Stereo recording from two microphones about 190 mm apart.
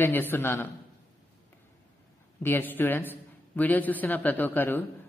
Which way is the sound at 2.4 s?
10° left (ahead or behind).